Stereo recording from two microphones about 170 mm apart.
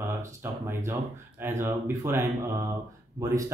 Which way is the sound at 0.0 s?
15° right (ahead or behind).